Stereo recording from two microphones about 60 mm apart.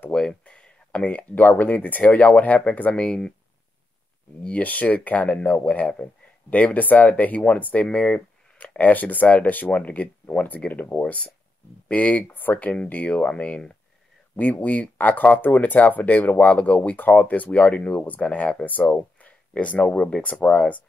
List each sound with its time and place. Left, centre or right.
0.1 s speech: centre
4.6 s speech: left
14.3 s speech: left